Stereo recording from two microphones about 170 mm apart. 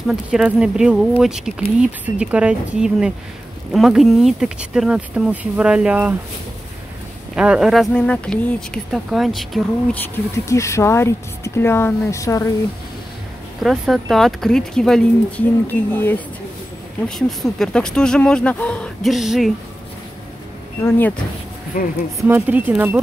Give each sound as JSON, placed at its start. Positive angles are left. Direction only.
{"t": 0.0, "sound": "speech", "side_deg": -5}
{"t": 7.3, "sound": "speech", "side_deg": -5}
{"t": 10.0, "sound": "speech", "side_deg": 15}
{"t": 13.6, "sound": "speech", "side_deg": 0}
{"t": 17.1, "sound": "speech", "side_deg": 0}
{"t": 21.7, "sound": "speech", "side_deg": 55}
{"t": 22.3, "sound": "speech", "side_deg": -10}